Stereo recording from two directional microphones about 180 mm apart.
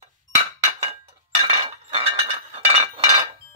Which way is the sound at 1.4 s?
35° right (ahead or behind).